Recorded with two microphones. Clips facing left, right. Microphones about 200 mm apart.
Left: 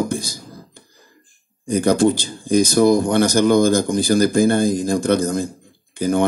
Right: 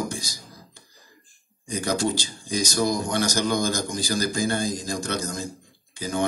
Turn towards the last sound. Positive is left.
turn(degrees=55)  # may be behind; listen again after turning